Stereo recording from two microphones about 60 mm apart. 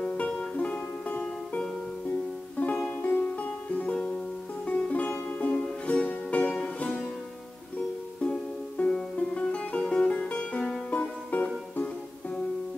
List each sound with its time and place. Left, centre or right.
0.6 s music: left
8.2 s music: centre